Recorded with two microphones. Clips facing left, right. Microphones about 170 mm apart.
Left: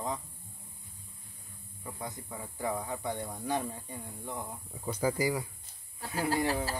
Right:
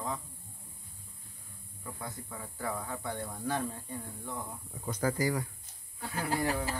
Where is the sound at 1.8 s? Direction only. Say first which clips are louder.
Left 1 dB; 15° left (ahead or behind).